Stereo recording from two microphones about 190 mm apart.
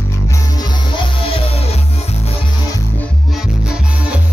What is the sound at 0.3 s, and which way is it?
Music, 20° left (ahead or behind).